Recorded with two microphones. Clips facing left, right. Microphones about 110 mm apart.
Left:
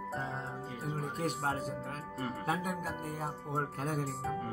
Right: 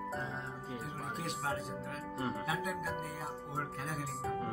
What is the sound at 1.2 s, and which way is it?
Speech, 35° left (ahead or behind).